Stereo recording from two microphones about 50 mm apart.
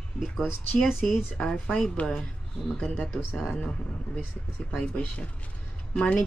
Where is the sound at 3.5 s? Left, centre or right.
Centre.